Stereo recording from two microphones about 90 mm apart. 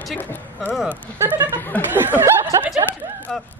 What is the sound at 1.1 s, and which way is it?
Speech, 25° right (ahead or behind).